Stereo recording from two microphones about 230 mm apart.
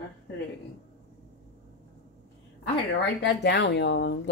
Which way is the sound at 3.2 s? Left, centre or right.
Left.